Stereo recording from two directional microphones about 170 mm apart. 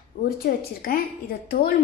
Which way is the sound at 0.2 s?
65° left (ahead or behind).